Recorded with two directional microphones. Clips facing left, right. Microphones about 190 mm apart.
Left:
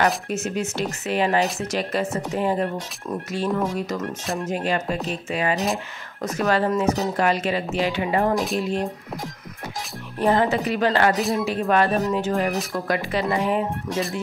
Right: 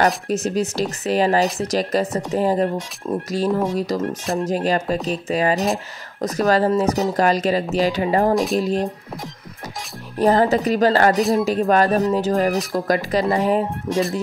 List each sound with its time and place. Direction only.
0.0 s speech: 35° right (ahead or behind)
10.1 s speech: 40° right (ahead or behind)